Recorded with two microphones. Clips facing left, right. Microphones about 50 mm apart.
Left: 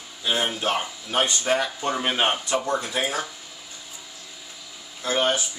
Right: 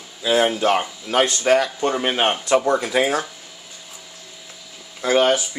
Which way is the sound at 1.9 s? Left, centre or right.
Centre.